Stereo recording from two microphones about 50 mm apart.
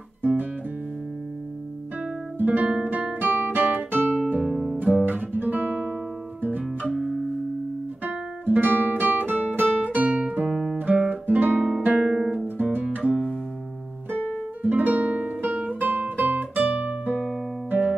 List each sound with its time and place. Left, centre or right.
0.2 s guitar: right
2.3 s guitar: right
4.4 s music: centre
5.0 s guitar: right
6.9 s music: centre
8.0 s guitar: right
10.5 s guitar: centre
11.0 s guitar: right
12.0 s music: centre
12.9 s music: right
14.6 s guitar: right
17.6 s music: right